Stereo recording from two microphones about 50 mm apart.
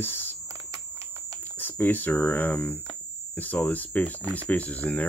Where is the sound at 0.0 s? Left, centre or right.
Left.